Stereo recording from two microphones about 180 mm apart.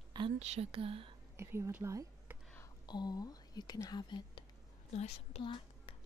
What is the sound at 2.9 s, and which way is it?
Speech, 25° left (ahead or behind).